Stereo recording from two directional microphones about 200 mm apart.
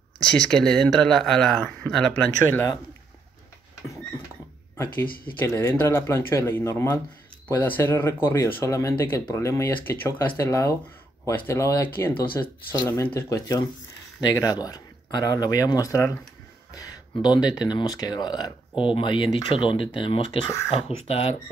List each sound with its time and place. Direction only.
0.2 s speech: 5° left (ahead or behind)
5.0 s speech: 45° left (ahead or behind)
5.4 s speech: 15° left (ahead or behind)